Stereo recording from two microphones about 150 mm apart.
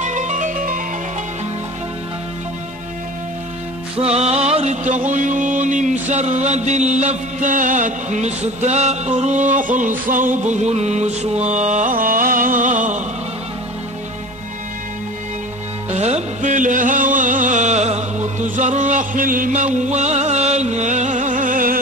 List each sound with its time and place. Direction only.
0.0 s music: 55° right (ahead or behind)
4.1 s music: 45° right (ahead or behind)
15.9 s music: 50° right (ahead or behind); by 21.7 s 65° right (ahead or behind)